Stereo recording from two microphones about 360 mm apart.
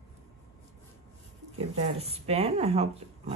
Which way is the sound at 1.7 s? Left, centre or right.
Centre.